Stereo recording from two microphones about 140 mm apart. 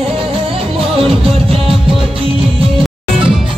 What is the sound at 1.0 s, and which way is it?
Music, 45° right (ahead or behind).